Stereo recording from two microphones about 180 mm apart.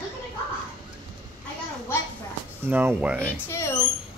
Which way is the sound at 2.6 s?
10° right (ahead or behind).